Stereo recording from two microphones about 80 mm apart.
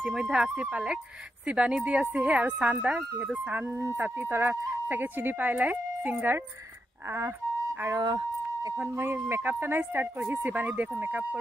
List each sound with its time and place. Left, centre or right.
0.0 s speech: centre; by 6.4 s right
8.7 s speech: right